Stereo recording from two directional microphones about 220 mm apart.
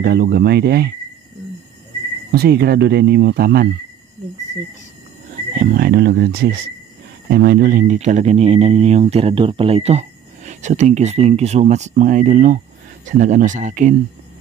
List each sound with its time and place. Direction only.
0.0 s speech: 45° right (ahead or behind)
2.3 s speech: 45° right (ahead or behind)
5.6 s speech: 40° right (ahead or behind)